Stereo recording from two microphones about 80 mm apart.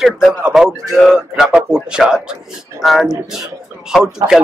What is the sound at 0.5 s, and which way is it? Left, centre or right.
A man's voice, centre.